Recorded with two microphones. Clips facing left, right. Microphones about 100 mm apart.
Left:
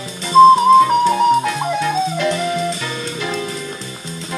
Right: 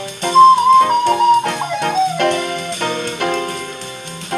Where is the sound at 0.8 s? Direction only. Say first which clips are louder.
Right 1 dB; 60° right (ahead or behind).